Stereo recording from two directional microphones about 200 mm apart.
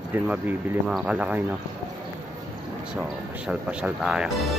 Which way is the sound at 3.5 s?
5° right (ahead or behind).